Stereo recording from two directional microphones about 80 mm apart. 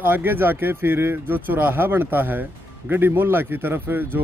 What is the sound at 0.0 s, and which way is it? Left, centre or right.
A man's voice, right.